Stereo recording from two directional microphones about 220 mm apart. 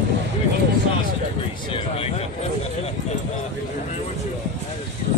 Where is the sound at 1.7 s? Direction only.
25° left (ahead or behind).